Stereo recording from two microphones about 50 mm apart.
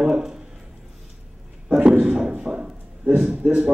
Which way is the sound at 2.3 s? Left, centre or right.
Right.